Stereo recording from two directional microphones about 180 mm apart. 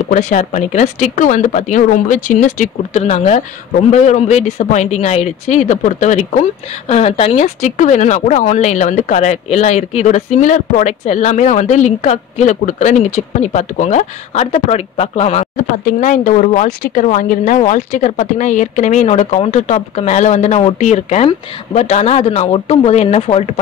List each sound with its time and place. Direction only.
0.1 s speech: 40° left (ahead or behind)